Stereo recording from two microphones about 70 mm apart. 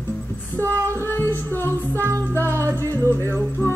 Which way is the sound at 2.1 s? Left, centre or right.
Right.